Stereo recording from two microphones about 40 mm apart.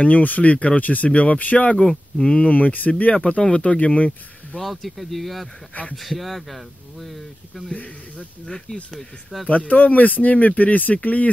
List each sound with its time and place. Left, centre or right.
0.0 s speech: left
1.8 s speech: centre
2.3 s speech: left
4.6 s speech: centre
7.7 s speech: left
9.5 s speech: left